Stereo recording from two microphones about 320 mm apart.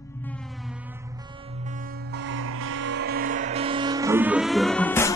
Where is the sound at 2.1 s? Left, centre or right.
Right.